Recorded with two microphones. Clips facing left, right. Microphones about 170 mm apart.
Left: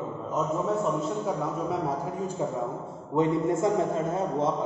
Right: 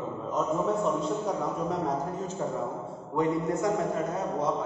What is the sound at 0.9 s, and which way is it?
Speech, 5° left (ahead or behind).